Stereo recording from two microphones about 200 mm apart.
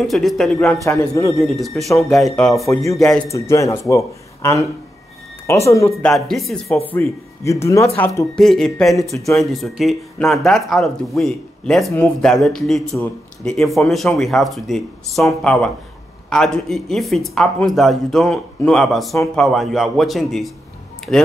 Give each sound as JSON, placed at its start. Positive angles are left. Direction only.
{"t": 0.0, "sound": "speech", "side_deg": 0}
{"t": 0.8, "sound": "speech", "side_deg": 15}
{"t": 1.4, "sound": "speech", "side_deg": 0}
{"t": 3.3, "sound": "speech", "side_deg": 15}
{"t": 5.7, "sound": "speech", "side_deg": 15}
{"t": 6.0, "sound": "speech", "side_deg": 0}
{"t": 6.9, "sound": "speech", "side_deg": 10}